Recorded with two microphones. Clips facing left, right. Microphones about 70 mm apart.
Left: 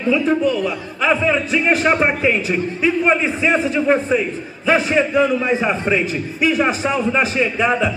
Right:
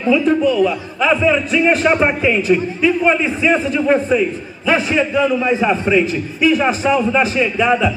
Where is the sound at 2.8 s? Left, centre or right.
Left.